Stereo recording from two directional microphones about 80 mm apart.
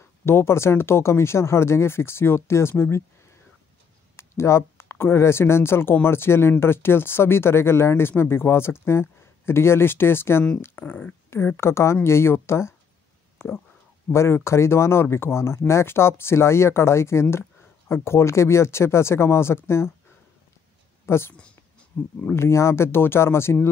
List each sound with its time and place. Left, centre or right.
0.2 s speech: left
4.2 s speech: left
11.2 s speech: left
13.4 s speech: centre
14.1 s speech: left
21.0 s a woman's voice: left
21.9 s speech: centre
22.3 s speech: left